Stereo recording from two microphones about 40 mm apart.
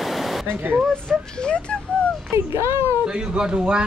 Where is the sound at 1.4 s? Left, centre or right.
Left.